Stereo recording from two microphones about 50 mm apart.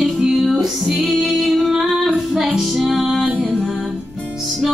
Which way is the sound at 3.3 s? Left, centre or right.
Right.